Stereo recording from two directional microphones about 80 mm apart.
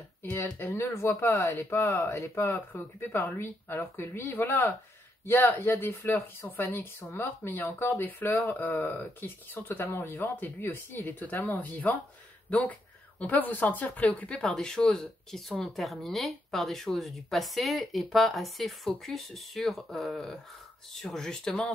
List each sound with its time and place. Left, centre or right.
0.2 s speech: left; by 21.7 s centre